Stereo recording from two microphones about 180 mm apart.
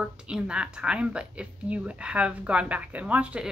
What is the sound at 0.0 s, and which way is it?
Speech, 5° right (ahead or behind).